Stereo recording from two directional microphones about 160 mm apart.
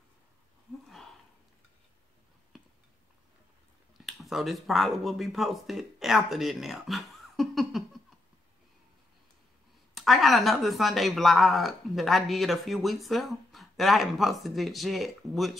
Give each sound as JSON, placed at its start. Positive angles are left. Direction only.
{"t": 4.0, "sound": "speech", "side_deg": 0}
{"t": 9.9, "sound": "speech", "side_deg": 0}